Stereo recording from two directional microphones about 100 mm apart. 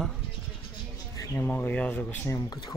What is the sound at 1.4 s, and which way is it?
Speech, 20° left (ahead or behind).